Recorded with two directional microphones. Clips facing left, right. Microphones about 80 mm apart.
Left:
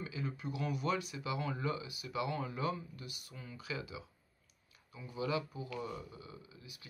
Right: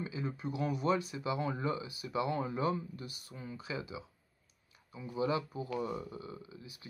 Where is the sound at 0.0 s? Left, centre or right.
Right.